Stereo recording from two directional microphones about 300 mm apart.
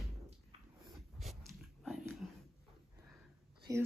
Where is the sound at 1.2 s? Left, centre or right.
Centre.